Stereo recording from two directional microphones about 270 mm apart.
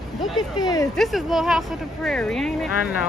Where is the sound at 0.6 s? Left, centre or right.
Centre.